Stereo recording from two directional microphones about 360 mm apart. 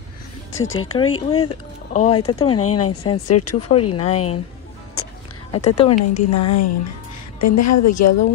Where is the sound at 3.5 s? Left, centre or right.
Centre.